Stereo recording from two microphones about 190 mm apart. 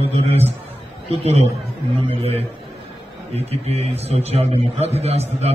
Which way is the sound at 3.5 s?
35° right (ahead or behind).